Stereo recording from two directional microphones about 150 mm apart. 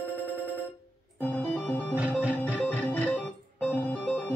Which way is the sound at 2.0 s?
10° right (ahead or behind).